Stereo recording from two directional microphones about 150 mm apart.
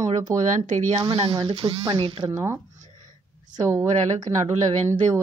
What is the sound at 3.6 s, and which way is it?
Speech, 20° right (ahead or behind).